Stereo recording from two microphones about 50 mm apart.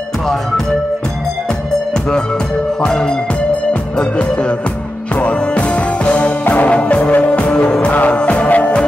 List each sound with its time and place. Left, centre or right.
2.8 s music: centre